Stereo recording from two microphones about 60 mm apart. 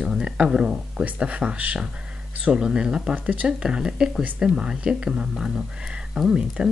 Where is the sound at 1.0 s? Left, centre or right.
Centre.